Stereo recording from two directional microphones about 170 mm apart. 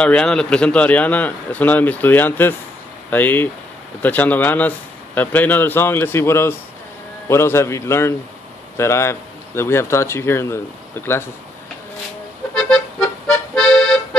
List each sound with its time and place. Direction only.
0.0 s speech: 5° left (ahead or behind)
12.5 s accordion: 5° left (ahead or behind)